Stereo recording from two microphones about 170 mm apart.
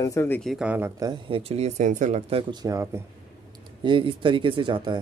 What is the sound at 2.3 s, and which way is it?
Speech, 30° right (ahead or behind).